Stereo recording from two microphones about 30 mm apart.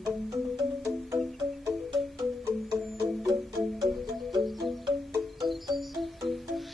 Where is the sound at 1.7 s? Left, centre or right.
Centre.